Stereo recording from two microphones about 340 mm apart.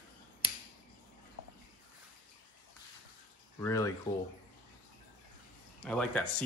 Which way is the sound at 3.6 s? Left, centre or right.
Centre.